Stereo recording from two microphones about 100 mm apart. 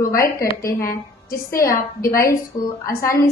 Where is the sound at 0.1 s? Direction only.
30° left (ahead or behind).